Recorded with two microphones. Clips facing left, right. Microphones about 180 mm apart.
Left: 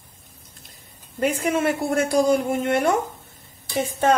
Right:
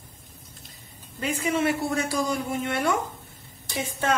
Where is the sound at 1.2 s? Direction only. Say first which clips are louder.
Left 4 dB; 50° left (ahead or behind).